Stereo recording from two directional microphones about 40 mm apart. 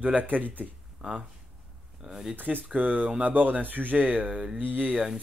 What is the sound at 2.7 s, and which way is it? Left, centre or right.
A man's voice, right.